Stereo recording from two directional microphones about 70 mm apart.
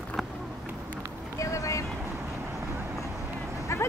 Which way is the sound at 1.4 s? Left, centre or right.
Left.